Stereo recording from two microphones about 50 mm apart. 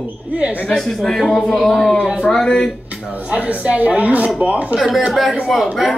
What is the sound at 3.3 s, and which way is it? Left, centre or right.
A woman's voice, right.